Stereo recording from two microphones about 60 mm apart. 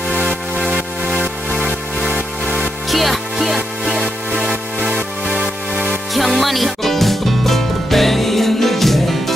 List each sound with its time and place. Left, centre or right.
2.9 s music: centre
4.5 s music: centre
6.1 s music: centre